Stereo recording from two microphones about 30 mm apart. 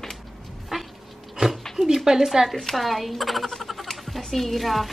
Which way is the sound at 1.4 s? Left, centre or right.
Right.